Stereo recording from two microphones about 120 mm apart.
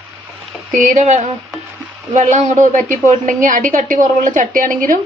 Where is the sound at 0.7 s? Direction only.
85° right.